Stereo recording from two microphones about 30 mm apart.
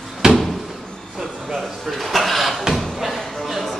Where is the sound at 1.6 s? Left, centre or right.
Centre.